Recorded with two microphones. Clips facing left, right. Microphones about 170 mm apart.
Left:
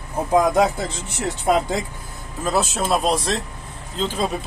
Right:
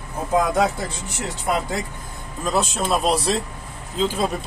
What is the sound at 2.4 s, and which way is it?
Speech, 5° left (ahead or behind).